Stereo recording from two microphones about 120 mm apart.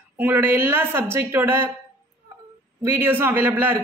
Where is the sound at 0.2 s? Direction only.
15° right (ahead or behind).